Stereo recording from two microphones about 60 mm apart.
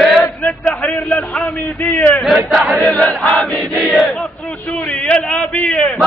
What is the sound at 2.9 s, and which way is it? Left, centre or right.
Crowd, centre.